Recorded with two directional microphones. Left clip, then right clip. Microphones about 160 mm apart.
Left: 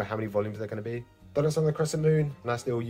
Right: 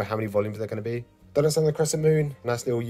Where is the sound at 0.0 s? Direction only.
30° right (ahead or behind).